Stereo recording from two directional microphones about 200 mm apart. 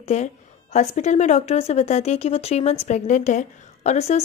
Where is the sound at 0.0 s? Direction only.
35° left (ahead or behind).